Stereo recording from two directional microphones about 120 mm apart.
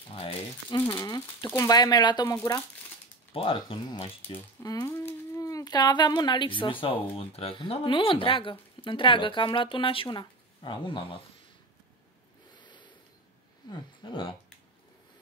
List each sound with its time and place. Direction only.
0.1 s speech: 45° left (ahead or behind)
1.0 s speech: 35° left (ahead or behind)
2.2 s speech: 25° left (ahead or behind)
3.3 s speech: 50° left (ahead or behind)
4.8 s speech: 20° left (ahead or behind); by 11.1 s 45° left (ahead or behind)
12.5 s a sound: 40° left (ahead or behind)
13.7 s speech: 40° left (ahead or behind)